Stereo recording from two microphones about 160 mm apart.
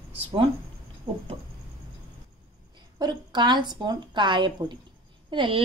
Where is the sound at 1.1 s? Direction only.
40° right (ahead or behind).